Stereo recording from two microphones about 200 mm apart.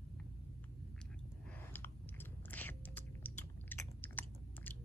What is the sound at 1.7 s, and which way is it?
Chewing, 10° left (ahead or behind).